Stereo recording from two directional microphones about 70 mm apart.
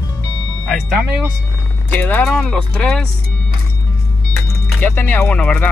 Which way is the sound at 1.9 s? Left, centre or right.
Left.